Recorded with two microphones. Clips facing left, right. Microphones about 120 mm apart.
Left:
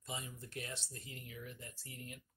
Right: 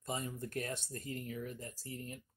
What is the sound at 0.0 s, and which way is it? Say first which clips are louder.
Speech: right 7 dB; 45° right (ahead or behind).